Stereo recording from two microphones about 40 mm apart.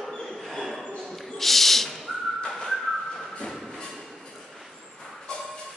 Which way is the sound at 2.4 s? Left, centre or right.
Centre.